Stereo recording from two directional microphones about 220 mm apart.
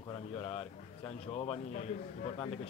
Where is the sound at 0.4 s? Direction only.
25° left (ahead or behind).